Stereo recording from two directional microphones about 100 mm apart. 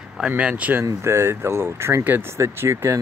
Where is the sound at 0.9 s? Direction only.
30° right (ahead or behind).